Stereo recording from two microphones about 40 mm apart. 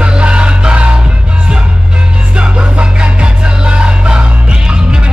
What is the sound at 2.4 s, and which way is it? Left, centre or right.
Music, right.